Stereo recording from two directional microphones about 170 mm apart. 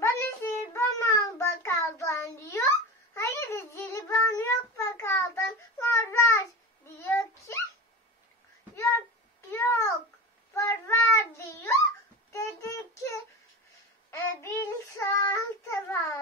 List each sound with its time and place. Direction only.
0.0 s child singing: 15° left (ahead or behind)
8.7 s a sound: 15° left (ahead or behind)
9.5 s babbling: 15° left (ahead or behind)
10.5 s child singing: 15° left (ahead or behind)